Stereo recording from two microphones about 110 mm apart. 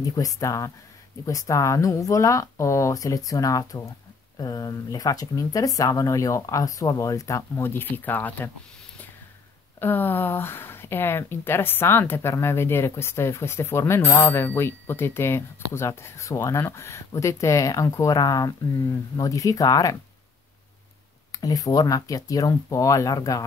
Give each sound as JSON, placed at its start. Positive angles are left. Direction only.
{"t": 0.0, "sound": "speech", "side_deg": 30}
{"t": 9.8, "sound": "speech", "side_deg": 20}
{"t": 21.3, "sound": "speech", "side_deg": 35}